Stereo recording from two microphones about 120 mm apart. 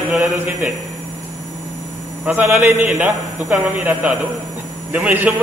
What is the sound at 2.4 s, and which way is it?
Speech, 15° right (ahead or behind).